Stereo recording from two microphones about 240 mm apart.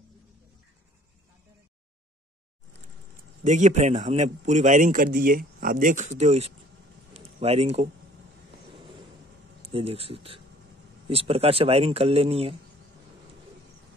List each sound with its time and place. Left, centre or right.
3.4 s a man's voice: right
9.7 s speech: right